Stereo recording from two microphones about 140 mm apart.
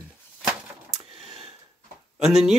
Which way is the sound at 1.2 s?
45° right (ahead or behind).